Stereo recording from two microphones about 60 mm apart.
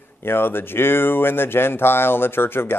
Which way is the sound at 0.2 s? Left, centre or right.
Left.